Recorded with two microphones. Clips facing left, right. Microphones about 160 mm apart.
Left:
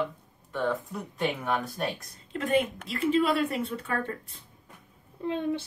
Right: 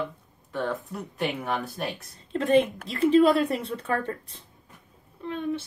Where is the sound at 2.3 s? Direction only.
30° right (ahead or behind).